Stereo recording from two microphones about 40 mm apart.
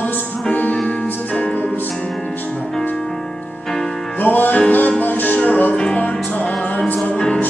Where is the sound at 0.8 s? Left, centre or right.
Left.